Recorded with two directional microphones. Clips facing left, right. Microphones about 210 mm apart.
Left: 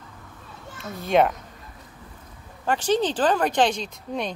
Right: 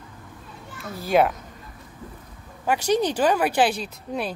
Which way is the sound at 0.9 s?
Centre (ahead or behind).